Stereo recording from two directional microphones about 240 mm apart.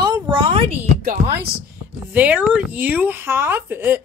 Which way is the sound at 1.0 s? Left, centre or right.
Right.